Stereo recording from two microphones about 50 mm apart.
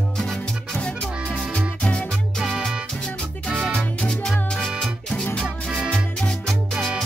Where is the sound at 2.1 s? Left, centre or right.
Centre.